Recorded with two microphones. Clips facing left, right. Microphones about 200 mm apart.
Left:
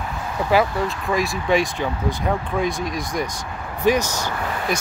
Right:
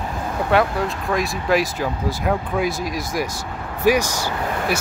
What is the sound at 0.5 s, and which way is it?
Speech, centre (ahead or behind).